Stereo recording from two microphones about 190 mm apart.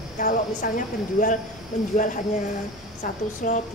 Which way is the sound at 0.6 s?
50° left (ahead or behind).